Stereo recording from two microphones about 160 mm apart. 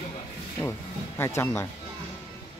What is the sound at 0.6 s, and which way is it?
Speech, 15° left (ahead or behind).